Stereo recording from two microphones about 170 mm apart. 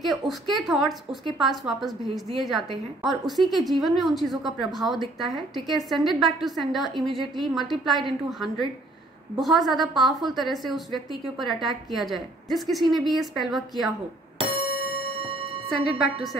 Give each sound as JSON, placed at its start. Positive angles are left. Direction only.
{"t": 0.0, "sound": "a woman's voice", "side_deg": 0}
{"t": 14.4, "sound": "ding", "side_deg": -35}
{"t": 15.1, "sound": "music", "side_deg": -35}